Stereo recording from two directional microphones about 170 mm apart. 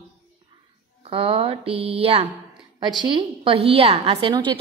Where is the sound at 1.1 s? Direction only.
35° right (ahead or behind).